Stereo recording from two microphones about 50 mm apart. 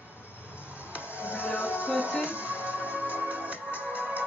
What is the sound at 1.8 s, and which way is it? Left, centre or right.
Music, right.